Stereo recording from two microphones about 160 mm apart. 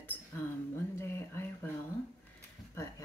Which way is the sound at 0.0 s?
10° left (ahead or behind).